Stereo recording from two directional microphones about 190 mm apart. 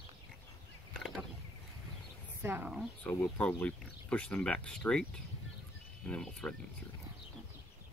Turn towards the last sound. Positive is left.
turn(degrees=5)  # may be behind; listen again after turning